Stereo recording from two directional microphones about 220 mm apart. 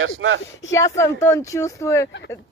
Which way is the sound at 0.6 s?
15° left (ahead or behind).